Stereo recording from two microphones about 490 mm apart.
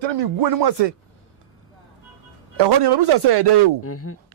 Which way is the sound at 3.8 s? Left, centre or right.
Left.